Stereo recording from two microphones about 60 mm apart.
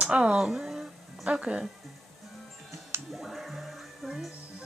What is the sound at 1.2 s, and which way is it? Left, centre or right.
Speech, centre.